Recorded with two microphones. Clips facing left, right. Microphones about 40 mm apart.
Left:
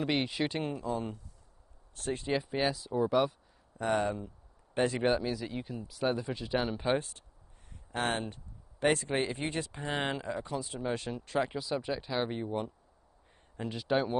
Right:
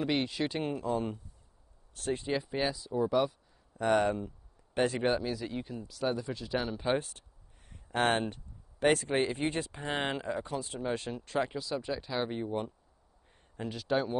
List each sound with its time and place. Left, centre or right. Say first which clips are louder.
0.0 s speech: even; centre
0.8 s speech: right 2 dB; right
2.1 s speech: left 2 dB; centre
3.9 s speech: right 3 dB; right
4.9 s speech: left 1 dB; centre
5.9 s speech: left 2 dB; centre
7.9 s speech: right 4 dB; right
9.0 s speech: right 2 dB; centre
11.1 s speech: even; centre
13.6 s speech: left 1 dB; centre